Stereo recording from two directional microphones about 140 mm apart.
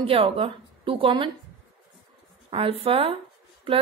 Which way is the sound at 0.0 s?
40° right (ahead or behind).